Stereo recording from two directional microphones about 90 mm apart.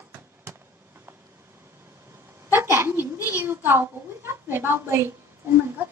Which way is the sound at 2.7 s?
25° right (ahead or behind).